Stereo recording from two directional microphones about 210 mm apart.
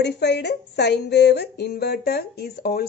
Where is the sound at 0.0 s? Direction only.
55° left (ahead or behind).